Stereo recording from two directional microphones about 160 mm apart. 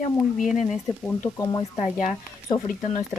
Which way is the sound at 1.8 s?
50° left (ahead or behind).